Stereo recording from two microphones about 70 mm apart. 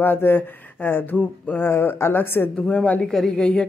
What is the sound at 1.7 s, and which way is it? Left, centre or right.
Speech, left.